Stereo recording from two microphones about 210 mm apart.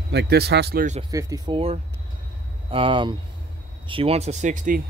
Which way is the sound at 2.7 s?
25° right (ahead or behind).